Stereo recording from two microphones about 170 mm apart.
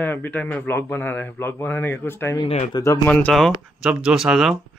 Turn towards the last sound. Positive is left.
turn(degrees=0)  # may be behind; listen again after turning